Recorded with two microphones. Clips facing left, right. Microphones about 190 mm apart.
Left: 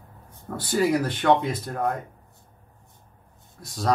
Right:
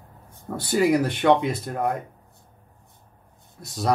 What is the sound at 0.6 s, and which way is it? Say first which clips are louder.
Speech: right 2 dB; 15° right (ahead or behind).